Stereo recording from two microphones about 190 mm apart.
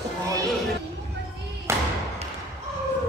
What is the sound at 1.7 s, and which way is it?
Thump, 15° right (ahead or behind).